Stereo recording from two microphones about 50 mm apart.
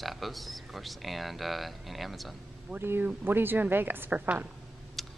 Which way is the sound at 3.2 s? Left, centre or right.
Right.